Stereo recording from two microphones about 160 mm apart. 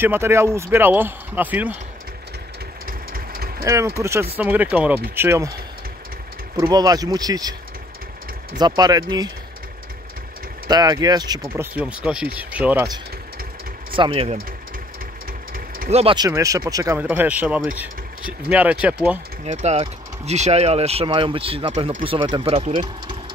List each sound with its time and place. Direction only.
0.0 s speech: 15° right (ahead or behind)
2.9 s engine: 65° right (ahead or behind)
3.6 s speech: 20° right (ahead or behind)
6.6 s speech: 25° right (ahead or behind)
8.5 s speech: 25° right (ahead or behind)
10.7 s speech: 25° right (ahead or behind)
11.4 s speech: 15° right (ahead or behind)
13.9 s speech: 35° right (ahead or behind)
15.9 s speech: 40° right (ahead or behind)
16.2 s speech: 20° right (ahead or behind)
19.4 s speech: 45° right (ahead or behind)